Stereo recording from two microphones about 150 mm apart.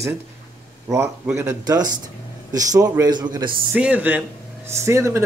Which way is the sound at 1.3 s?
20° right (ahead or behind).